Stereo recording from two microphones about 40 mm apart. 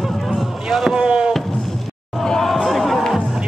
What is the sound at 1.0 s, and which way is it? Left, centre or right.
Music, right.